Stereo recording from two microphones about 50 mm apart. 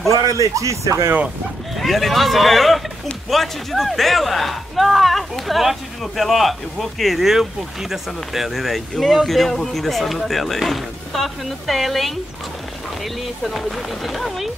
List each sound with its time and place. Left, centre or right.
0.1 s speech: right
1.8 s a man's voice: centre
13.5 s a man's voice: centre